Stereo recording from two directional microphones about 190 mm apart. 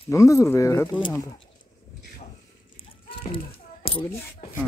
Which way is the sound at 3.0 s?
30° left (ahead or behind).